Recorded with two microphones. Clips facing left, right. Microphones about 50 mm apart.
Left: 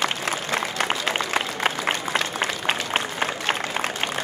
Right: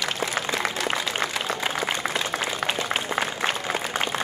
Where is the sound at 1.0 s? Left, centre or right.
Left.